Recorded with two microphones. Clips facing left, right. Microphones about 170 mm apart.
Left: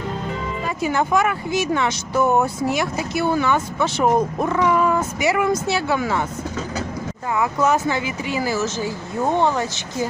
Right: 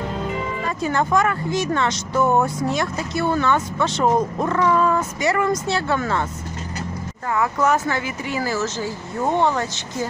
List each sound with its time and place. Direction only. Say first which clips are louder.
0.8 s speech: even; 5° left (ahead or behind)
7.3 s speech: even; 10° left (ahead or behind)